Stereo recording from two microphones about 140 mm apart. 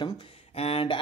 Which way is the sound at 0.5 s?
45° left (ahead or behind).